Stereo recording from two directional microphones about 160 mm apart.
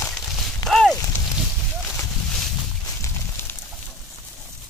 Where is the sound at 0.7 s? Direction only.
5° left (ahead or behind).